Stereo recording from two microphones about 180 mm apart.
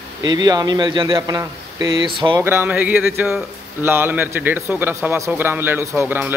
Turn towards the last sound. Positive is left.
turn(degrees=-10)  # may be behind; listen again after turning